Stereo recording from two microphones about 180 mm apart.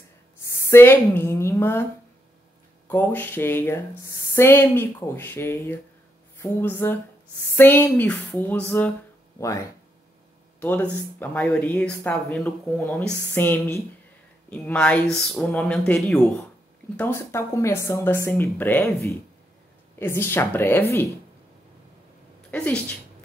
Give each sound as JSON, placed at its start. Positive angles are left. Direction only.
{"t": 0.4, "sound": "a woman's voice", "side_deg": 15}
{"t": 2.9, "sound": "speech", "side_deg": 10}
{"t": 16.9, "sound": "speech", "side_deg": 10}
{"t": 22.5, "sound": "speech", "side_deg": 10}